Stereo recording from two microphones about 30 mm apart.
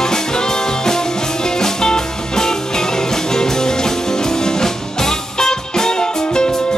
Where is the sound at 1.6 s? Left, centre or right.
Centre.